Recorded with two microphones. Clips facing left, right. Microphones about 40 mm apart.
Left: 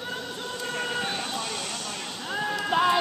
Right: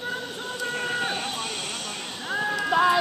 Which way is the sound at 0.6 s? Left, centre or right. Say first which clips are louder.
Right 3 dB; centre.